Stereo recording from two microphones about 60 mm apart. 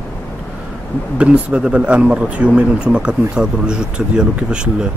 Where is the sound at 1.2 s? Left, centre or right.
Centre.